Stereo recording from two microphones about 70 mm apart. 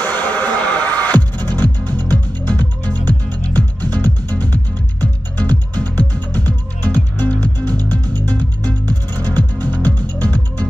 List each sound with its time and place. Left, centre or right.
0.0 s music: left
5.0 s music: centre